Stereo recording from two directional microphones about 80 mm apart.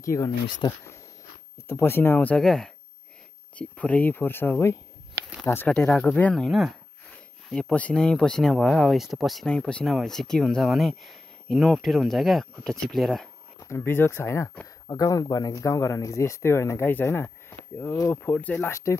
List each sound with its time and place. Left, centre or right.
0.0 s speech: left
0.6 s speech: left
1.7 s speech: left
2.1 s speech: centre
3.5 s speech: centre
5.7 s speech: centre
6.3 s speech: centre
9.5 s speech: centre
13.6 s speech: left
14.9 s speech: left
18.7 s speech: left